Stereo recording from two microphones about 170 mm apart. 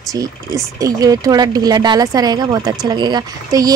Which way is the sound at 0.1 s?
20° right (ahead or behind).